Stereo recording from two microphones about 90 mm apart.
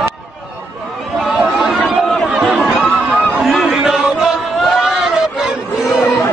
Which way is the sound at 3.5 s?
Centre (ahead or behind).